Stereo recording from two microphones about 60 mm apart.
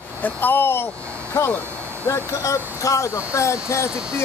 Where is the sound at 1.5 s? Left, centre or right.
Left.